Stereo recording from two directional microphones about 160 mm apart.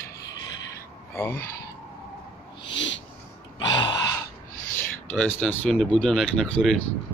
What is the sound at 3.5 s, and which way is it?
Gasp, 30° left (ahead or behind).